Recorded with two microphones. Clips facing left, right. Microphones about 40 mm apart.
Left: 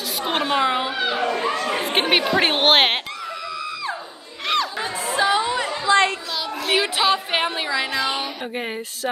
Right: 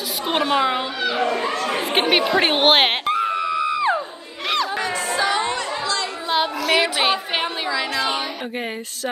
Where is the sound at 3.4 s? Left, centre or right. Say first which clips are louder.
Right 8 dB; right.